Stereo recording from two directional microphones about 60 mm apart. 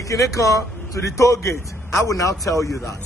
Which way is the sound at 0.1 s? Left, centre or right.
Left.